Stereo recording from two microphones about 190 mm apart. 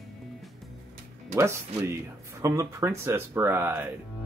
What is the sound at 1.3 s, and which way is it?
Speech, 15° right (ahead or behind).